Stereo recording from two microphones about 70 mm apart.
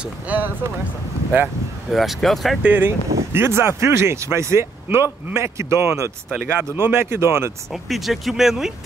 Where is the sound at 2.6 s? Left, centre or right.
Right.